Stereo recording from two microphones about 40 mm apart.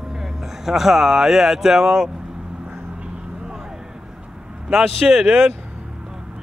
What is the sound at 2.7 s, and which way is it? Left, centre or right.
Vehicle, right.